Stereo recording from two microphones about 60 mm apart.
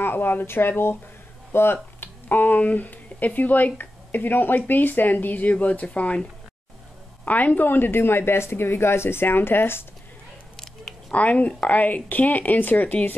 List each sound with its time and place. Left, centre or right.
0.0 s speech: left
7.2 s a woman's voice: left
10.5 s a sound: centre
11.1 s speech: left